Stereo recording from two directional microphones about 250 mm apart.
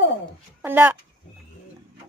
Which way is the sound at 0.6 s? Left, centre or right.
Centre.